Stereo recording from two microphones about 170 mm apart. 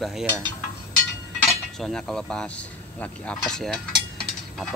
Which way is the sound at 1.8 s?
5° left (ahead or behind).